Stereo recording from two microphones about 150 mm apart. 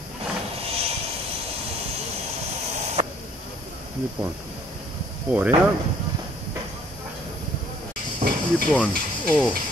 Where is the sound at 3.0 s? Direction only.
45° right (ahead or behind).